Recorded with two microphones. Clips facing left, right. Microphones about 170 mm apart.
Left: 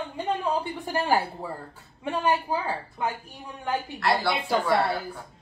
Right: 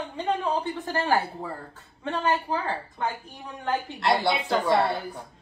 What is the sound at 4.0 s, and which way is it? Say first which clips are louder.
Speech: right 1 dB; 20° right (ahead or behind).